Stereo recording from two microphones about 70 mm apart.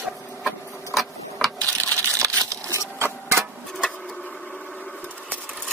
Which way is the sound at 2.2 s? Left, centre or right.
Right.